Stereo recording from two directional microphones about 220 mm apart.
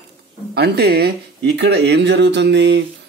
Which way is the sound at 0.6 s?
45° right (ahead or behind).